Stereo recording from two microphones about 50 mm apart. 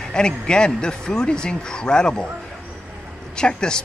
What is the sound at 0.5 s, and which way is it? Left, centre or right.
Speech, centre.